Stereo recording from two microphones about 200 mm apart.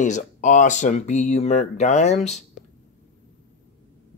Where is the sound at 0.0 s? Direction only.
35° left (ahead or behind).